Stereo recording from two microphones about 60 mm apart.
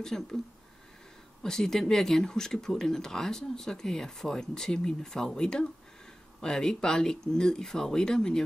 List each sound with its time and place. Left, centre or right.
0.0 s speech: centre
1.4 s speech: centre